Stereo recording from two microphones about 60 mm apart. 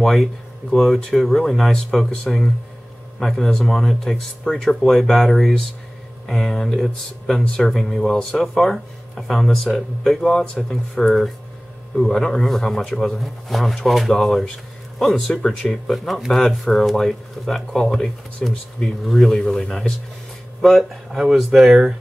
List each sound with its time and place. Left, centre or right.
0.0 s speech: centre
7.7 s speech: centre